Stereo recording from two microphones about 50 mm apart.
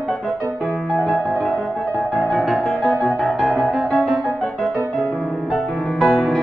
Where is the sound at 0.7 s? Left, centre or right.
Centre.